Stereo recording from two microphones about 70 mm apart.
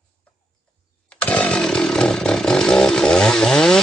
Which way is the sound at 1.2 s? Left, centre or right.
Centre.